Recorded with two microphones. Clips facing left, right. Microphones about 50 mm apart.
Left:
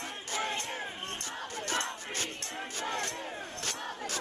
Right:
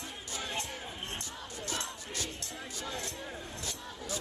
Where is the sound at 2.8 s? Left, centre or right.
Left.